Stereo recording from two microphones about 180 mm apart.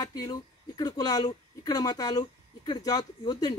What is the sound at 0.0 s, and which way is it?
Speech, 20° left (ahead or behind).